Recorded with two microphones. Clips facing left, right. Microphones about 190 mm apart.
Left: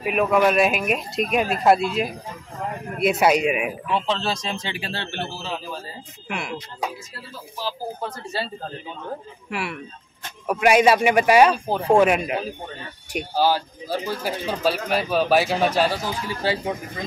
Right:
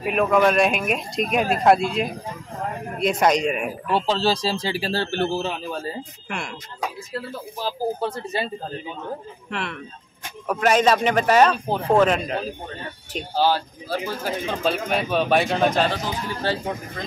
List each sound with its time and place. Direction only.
0.0 s speech: 5° left (ahead or behind)
3.9 s speech: 35° right (ahead or behind)
6.2 s speech: 5° left (ahead or behind)
8.2 s speech: 20° right (ahead or behind)
9.5 s speech: 10° left (ahead or behind)